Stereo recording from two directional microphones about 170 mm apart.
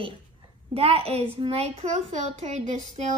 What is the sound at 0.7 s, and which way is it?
A child's voice, 35° right (ahead or behind).